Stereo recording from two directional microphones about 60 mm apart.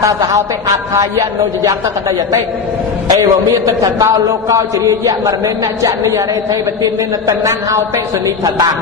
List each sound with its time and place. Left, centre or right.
0.0 s a man's voice: right
3.2 s a man's voice: right